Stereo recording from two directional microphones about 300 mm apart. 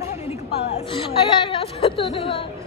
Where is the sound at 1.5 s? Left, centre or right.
Centre.